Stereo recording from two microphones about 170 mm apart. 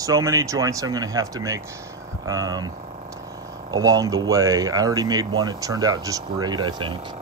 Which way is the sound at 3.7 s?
20° right (ahead or behind).